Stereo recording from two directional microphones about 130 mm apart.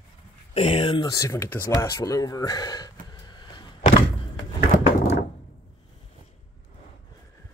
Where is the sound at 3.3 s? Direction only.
35° left (ahead or behind).